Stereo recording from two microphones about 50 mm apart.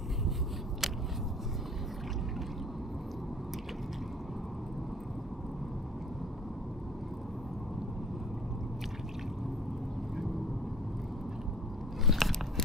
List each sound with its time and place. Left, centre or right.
12.1 s biting: centre